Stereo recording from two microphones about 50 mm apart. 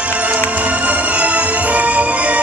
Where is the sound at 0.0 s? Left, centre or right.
Right.